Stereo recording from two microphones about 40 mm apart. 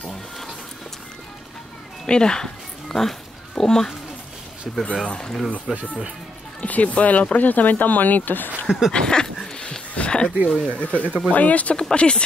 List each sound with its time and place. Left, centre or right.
2.0 s speech: left
4.7 s speech: centre
5.0 s speech: centre
5.7 s speech: centre
6.6 s speech: left
8.6 s a sound: centre
8.9 s a sound: left
10.7 s speech: left